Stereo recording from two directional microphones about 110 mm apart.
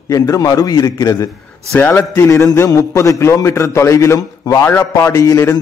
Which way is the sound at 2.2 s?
30° left (ahead or behind).